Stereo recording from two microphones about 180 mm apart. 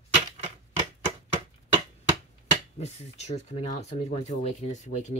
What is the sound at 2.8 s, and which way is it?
Speech, 35° left (ahead or behind).